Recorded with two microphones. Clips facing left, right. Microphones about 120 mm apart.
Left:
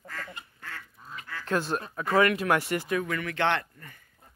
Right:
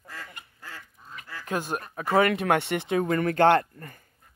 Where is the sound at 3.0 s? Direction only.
45° right (ahead or behind).